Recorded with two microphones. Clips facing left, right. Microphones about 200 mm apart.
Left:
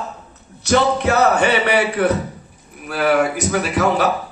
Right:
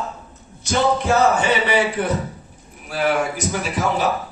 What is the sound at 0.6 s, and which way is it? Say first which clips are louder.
A man's voice: left 3 dB; 65° left (ahead or behind).